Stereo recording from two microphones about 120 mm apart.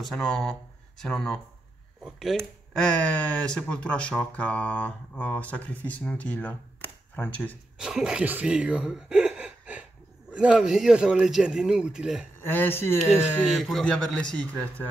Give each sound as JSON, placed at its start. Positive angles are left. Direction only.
{"t": 0.0, "sound": "speech", "side_deg": 5}
{"t": 7.7, "sound": "speech", "side_deg": -5}
{"t": 12.4, "sound": "speech", "side_deg": 15}
{"t": 13.5, "sound": "speech", "side_deg": 0}